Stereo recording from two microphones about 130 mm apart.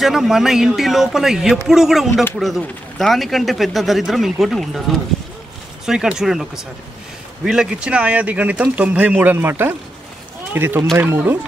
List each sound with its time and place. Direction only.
0.0 s speech: centre (ahead or behind)